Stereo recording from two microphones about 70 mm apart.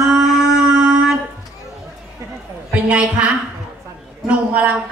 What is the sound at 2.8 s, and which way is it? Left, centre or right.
A woman's voice, centre.